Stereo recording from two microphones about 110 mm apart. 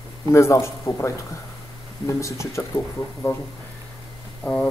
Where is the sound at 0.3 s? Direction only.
25° left (ahead or behind).